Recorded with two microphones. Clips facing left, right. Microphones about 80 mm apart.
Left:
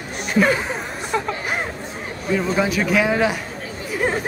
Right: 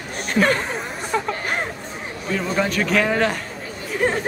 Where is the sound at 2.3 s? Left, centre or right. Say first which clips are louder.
Left 2 dB; centre.